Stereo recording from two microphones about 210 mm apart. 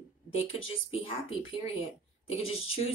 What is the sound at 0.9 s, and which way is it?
Speech, 25° left (ahead or behind).